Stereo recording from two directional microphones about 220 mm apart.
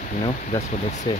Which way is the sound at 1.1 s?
20° left (ahead or behind).